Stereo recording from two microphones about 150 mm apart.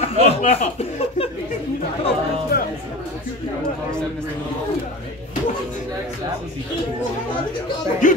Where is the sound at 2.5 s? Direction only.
90° left.